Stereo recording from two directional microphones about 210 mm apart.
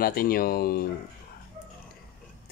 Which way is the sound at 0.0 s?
45° left (ahead or behind).